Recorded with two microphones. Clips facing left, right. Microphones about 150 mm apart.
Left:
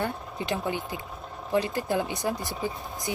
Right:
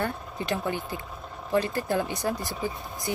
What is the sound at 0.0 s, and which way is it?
Speech, 15° left (ahead or behind).